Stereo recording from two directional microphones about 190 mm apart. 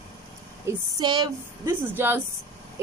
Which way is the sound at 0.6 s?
20° right (ahead or behind).